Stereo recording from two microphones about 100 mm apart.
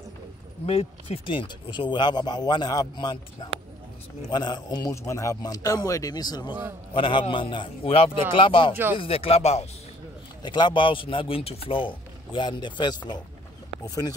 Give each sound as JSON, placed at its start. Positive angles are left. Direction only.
{"t": 0.7, "sound": "speech", "side_deg": 80}
{"t": 4.3, "sound": "speech", "side_deg": 45}
{"t": 4.9, "sound": "speech", "side_deg": 30}
{"t": 6.9, "sound": "speech", "side_deg": 60}
{"t": 10.4, "sound": "speech", "side_deg": 50}